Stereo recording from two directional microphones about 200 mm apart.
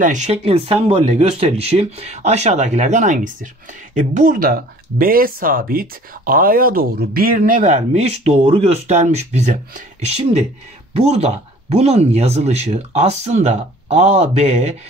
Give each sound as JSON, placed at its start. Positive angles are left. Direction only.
{"t": 0.0, "sound": "speech", "side_deg": -35}